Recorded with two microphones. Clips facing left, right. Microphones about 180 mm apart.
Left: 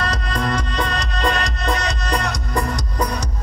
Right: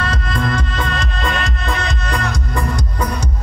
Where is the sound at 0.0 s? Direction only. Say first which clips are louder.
Right 2 dB; 35° left (ahead or behind).